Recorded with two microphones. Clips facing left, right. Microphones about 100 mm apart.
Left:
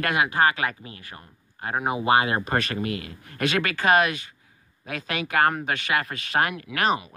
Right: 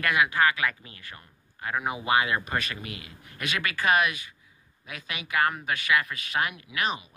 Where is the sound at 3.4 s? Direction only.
35° left (ahead or behind).